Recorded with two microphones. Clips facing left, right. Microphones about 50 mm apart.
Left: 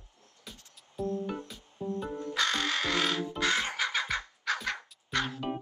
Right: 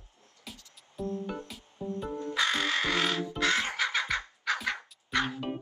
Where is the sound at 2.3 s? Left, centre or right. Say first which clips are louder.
Right 2 dB; centre.